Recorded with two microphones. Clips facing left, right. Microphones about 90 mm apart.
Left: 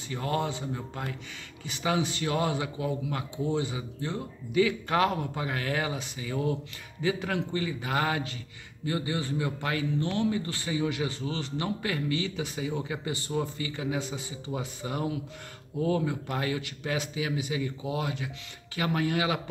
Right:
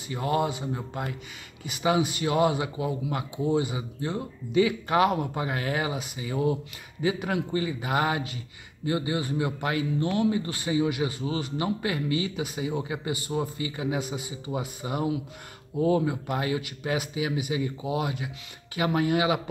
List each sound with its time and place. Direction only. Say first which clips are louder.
0.1 s a man's voice: right 4 dB; 15° right (ahead or behind)